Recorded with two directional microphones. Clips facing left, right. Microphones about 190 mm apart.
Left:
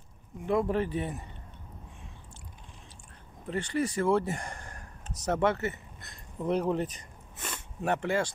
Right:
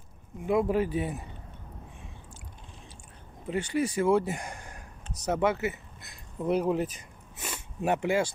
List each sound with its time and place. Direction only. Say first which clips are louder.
0.5 s speech: right 2 dB; 10° right (ahead or behind)
3.4 s speech: right 2 dB; 5° right (ahead or behind)